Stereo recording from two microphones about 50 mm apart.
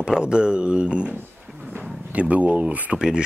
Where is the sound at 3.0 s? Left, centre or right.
Centre.